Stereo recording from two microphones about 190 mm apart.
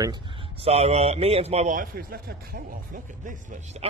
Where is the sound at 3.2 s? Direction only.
45° right (ahead or behind).